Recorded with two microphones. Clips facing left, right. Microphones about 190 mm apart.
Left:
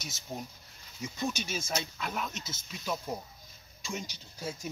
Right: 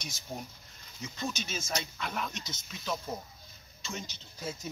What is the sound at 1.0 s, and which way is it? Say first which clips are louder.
Speech: left 3 dB; 15° left (ahead or behind).